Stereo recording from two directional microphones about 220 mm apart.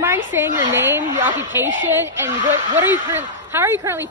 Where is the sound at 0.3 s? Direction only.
10° right (ahead or behind).